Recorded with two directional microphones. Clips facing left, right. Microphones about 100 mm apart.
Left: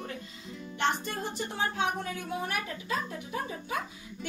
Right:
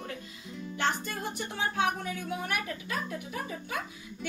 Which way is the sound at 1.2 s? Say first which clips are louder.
Left 1 dB; 30° left (ahead or behind).